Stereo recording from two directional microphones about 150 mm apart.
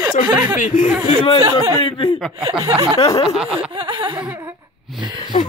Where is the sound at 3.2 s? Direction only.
5° right (ahead or behind).